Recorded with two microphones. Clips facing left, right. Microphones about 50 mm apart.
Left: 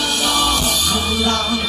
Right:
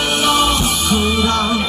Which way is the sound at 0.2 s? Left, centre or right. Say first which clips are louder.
Right 4 dB; right.